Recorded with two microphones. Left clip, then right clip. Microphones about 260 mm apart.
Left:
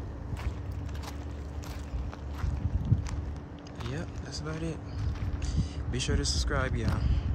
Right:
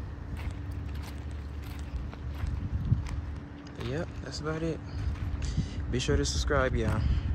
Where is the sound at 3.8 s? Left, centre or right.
Centre.